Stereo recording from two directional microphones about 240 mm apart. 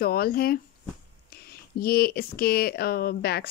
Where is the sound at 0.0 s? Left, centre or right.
Left.